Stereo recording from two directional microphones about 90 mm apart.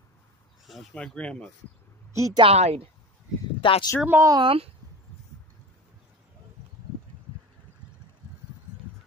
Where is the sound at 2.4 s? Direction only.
90° right.